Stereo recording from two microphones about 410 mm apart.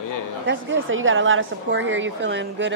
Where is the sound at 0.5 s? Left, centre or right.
Right.